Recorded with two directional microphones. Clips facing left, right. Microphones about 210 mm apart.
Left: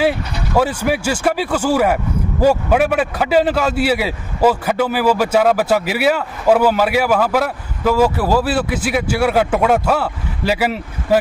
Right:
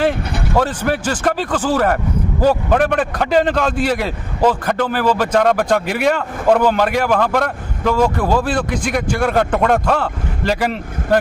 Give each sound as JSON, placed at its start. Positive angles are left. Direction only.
{"t": 0.6, "sound": "a man's voice", "side_deg": 10}